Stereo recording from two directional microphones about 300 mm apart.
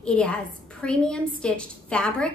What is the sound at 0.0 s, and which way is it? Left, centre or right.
A woman's voice, centre.